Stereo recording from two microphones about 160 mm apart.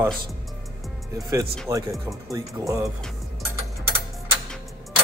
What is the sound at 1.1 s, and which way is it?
Speech, 20° right (ahead or behind).